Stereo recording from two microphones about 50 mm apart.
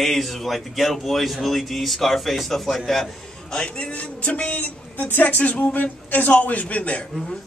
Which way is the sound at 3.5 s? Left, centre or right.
Left.